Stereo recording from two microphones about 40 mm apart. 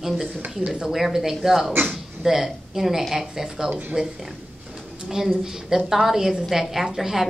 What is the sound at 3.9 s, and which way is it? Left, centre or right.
Speech, right.